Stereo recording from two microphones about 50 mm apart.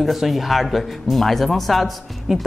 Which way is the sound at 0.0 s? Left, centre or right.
Centre.